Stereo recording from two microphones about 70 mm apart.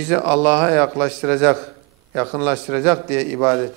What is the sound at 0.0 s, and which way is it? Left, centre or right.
A man's voice, centre.